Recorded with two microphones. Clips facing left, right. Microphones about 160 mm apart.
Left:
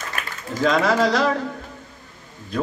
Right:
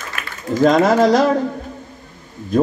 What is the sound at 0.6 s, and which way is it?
Speech, 45° right (ahead or behind).